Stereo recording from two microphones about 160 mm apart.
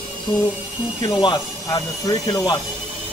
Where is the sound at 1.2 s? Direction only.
25° left (ahead or behind).